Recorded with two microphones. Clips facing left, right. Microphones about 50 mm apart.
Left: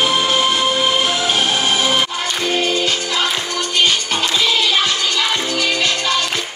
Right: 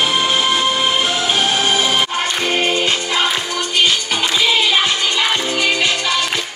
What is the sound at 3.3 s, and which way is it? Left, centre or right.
Music, centre.